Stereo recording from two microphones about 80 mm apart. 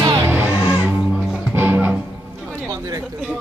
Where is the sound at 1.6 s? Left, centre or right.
Right.